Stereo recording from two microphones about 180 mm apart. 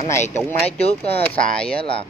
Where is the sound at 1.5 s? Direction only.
5° left (ahead or behind).